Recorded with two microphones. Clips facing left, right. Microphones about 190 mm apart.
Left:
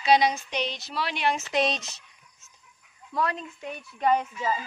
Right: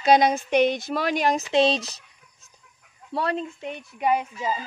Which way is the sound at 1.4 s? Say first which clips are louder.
Right 6 dB; 30° right (ahead or behind).